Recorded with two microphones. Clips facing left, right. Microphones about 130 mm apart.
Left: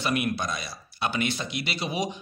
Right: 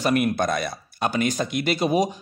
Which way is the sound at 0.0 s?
45° right (ahead or behind).